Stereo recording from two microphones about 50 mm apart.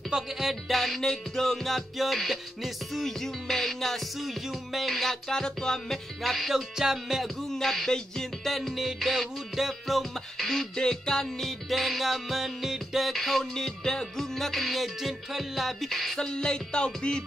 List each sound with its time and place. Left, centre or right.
0.1 s music: centre
6.2 s music: centre
7.4 s music: centre
16.2 s music: centre